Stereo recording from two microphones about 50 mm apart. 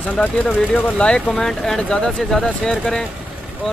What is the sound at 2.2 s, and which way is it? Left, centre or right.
Speech, centre.